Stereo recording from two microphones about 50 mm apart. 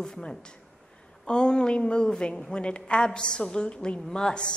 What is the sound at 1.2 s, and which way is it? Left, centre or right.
A woman's voice, centre.